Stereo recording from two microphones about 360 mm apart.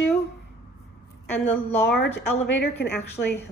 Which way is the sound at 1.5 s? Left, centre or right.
Centre.